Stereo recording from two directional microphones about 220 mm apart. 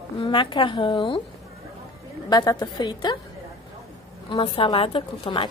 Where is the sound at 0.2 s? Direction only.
25° left (ahead or behind).